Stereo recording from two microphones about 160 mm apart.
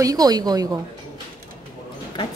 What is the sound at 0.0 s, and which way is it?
Speech, 25° right (ahead or behind).